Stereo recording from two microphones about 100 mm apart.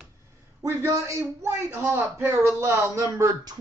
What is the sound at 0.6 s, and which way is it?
Speech, 30° right (ahead or behind).